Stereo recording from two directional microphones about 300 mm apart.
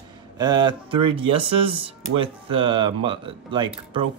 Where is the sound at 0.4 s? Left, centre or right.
Centre.